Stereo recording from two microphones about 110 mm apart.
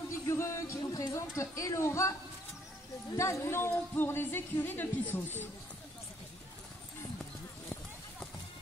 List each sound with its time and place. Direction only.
0.3 s speech: 25° left (ahead or behind)
3.2 s speech: 25° left (ahead or behind)